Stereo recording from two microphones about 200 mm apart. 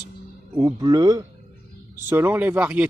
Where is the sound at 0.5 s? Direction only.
20° right (ahead or behind).